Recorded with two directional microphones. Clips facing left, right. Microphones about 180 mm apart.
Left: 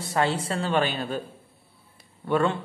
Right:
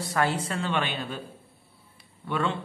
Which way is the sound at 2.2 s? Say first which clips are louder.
Left 5 dB; 45° left (ahead or behind).